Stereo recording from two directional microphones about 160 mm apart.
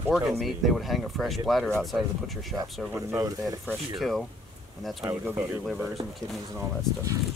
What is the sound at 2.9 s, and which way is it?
Speech, 20° right (ahead or behind).